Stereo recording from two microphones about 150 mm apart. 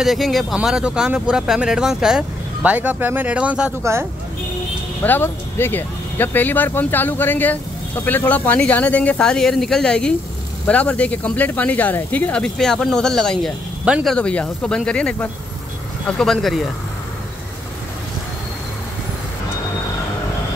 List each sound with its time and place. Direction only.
0.0 s speech: centre (ahead or behind)
5.0 s speech: 15° left (ahead or behind)